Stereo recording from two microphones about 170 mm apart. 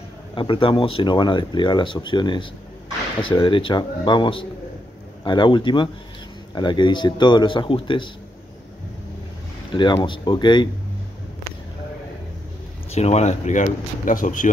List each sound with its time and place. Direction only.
0.3 s speech: 30° left (ahead or behind)
3.4 s speech: 30° left (ahead or behind)
9.7 s speech: 30° left (ahead or behind)
12.9 s speech: 40° left (ahead or behind)